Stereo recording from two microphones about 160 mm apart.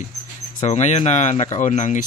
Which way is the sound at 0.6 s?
45° left (ahead or behind).